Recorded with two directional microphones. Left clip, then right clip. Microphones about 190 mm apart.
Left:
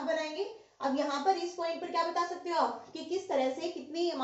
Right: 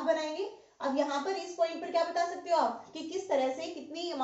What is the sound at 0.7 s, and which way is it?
Speech, 10° left (ahead or behind).